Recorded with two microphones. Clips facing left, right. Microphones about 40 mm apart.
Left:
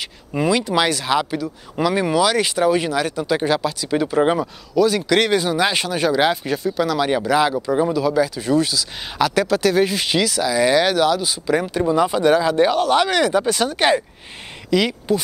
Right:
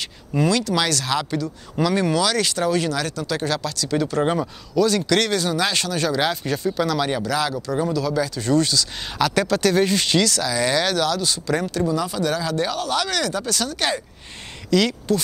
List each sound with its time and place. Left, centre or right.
0.0 s speech: centre